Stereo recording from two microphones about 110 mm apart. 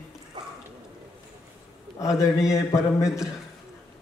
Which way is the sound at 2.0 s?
30° left (ahead or behind).